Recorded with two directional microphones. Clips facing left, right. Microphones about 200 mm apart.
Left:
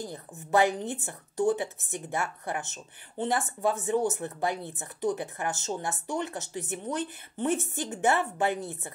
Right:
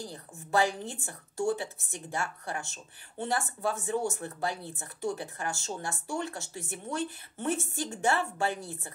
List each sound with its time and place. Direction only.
0.0 s speech: 20° left (ahead or behind)